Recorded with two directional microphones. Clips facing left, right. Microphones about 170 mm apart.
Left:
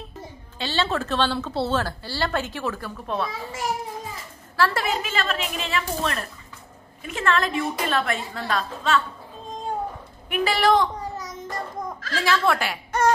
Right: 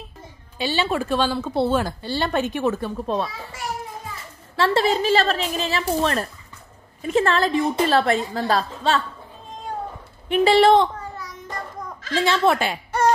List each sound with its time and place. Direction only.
0.6 s speech: 15° right (ahead or behind)
4.6 s a woman's voice: 25° right (ahead or behind)
10.2 s a woman's voice: 25° right (ahead or behind)
11.0 s child singing: 20° left (ahead or behind)
12.1 s a woman's voice: 20° right (ahead or behind)